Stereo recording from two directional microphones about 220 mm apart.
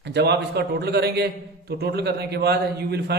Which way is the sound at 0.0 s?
50° right (ahead or behind).